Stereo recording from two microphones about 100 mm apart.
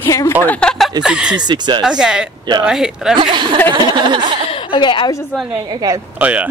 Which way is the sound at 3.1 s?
50° right (ahead or behind).